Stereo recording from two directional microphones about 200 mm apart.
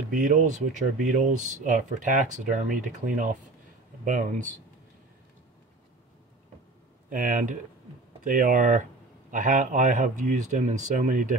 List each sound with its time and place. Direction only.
0.1 s speech: 40° right (ahead or behind)
7.1 s speech: 40° right (ahead or behind)